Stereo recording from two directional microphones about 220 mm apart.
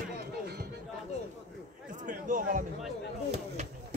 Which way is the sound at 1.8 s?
35° right (ahead or behind).